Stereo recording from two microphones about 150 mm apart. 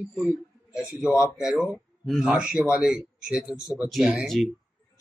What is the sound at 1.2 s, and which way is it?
A man's voice, 5° right (ahead or behind).